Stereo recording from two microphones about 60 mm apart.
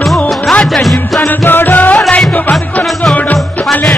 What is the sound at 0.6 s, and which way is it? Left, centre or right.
Music, centre.